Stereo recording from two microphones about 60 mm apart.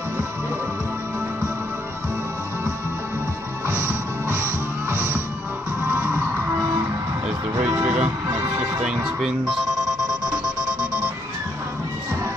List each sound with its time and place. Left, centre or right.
3.6 s music: right
7.7 s music: right
8.3 s music: right
8.8 s music: centre